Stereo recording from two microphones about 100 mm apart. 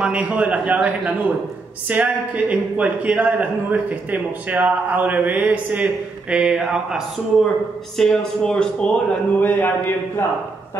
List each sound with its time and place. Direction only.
0.0 s a man's voice: 10° right (ahead or behind)
8.0 s a man's voice: 5° left (ahead or behind)
9.5 s speech: 20° left (ahead or behind)